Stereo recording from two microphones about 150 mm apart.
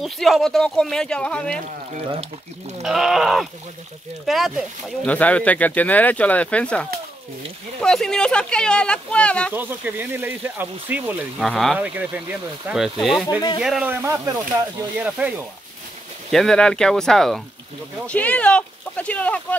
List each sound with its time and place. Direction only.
0.0 s speech: centre (ahead or behind)
2.0 s speech: 45° right (ahead or behind)
2.8 s speech: centre (ahead or behind)
9.5 s speech: 15° right (ahead or behind)
11.4 s speech: centre (ahead or behind)
11.8 s speech: 10° right (ahead or behind)
15.0 s speech: 10° right (ahead or behind)
16.3 s speech: 5° left (ahead or behind)